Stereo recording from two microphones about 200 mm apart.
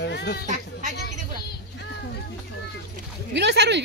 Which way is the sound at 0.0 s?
55° left (ahead or behind).